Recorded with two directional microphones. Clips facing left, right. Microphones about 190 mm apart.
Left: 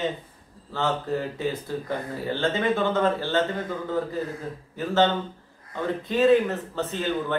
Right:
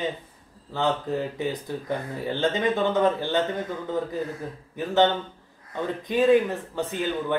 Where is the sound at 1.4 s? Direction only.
15° right (ahead or behind).